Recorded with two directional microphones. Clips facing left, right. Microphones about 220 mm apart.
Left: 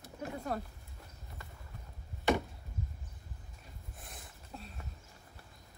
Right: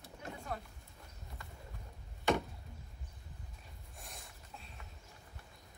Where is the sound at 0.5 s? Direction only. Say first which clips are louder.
Left 4 dB; 40° left (ahead or behind).